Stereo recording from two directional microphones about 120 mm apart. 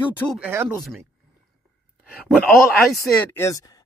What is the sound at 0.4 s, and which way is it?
Speech, 20° right (ahead or behind).